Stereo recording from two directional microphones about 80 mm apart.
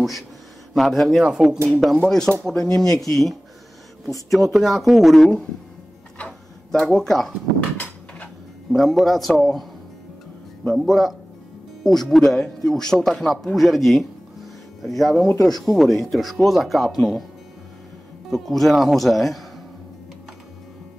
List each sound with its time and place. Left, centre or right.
0.7 s speech: centre
2.0 s speech: centre
6.1 s tick-tock: centre
7.7 s a sound: centre
8.7 s speech: centre
10.8 s speech: centre
18.3 s speech: centre